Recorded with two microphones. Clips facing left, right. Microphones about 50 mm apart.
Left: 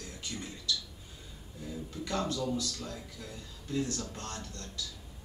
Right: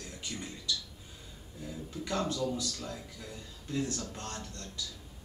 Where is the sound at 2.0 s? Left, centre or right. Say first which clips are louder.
Right 1 dB; centre.